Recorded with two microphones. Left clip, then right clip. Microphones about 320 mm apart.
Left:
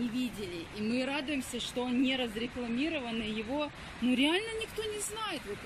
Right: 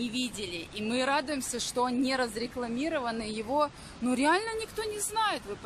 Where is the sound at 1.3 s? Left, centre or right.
Right.